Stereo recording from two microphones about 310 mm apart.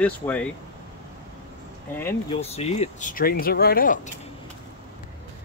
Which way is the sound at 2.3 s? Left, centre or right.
Centre.